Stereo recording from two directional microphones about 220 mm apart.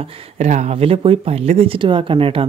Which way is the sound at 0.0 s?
25° right (ahead or behind).